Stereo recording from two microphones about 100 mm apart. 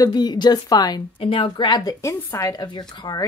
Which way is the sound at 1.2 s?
60° left (ahead or behind).